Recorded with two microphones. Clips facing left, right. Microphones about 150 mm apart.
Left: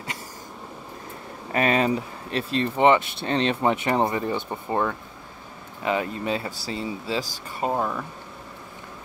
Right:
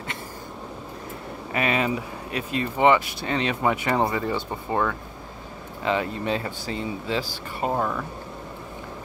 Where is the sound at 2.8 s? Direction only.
25° left (ahead or behind).